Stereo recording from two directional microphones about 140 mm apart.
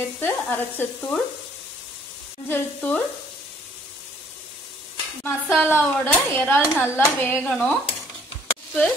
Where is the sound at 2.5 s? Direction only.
10° left (ahead or behind).